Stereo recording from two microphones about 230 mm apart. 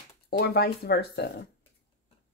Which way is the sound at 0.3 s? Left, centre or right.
Left.